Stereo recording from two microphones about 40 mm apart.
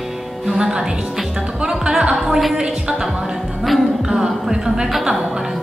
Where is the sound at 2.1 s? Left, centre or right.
Centre.